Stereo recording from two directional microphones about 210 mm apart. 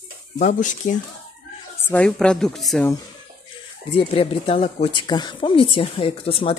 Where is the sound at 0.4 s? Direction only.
35° left (ahead or behind).